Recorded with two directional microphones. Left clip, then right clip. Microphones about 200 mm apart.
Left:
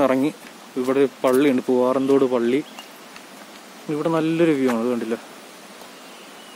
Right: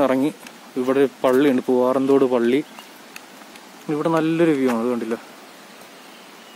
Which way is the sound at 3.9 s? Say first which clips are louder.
Right 1 dB; 20° right (ahead or behind).